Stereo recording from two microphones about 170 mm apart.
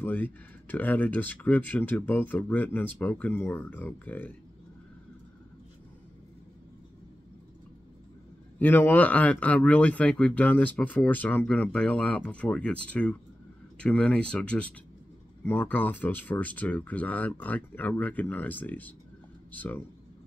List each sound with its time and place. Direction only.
0.0 s speech: 10° left (ahead or behind)
8.5 s speech: 10° left (ahead or behind)